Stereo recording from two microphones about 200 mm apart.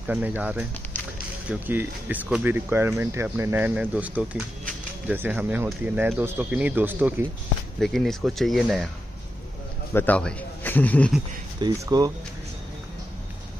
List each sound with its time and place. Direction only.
0.0 s speech: 10° right (ahead or behind)
7.8 s speech: centre (ahead or behind)
9.9 s a man's voice: 5° left (ahead or behind)
11.6 s speech: 20° right (ahead or behind)